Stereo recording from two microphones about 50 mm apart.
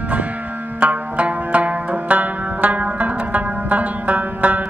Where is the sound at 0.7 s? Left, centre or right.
Right.